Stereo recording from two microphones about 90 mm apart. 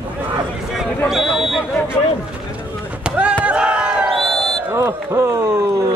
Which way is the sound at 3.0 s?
15° right (ahead or behind).